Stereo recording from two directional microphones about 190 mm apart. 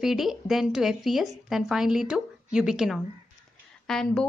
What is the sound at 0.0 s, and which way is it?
A woman's voice, centre (ahead or behind).